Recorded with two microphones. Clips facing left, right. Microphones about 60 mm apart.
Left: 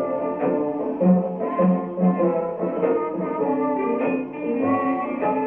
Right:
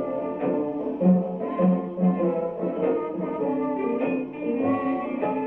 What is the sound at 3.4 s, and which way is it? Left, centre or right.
Music, left.